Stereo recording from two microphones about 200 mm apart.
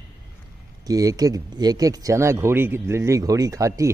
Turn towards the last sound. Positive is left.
turn(degrees=-15)  # may be behind; listen again after turning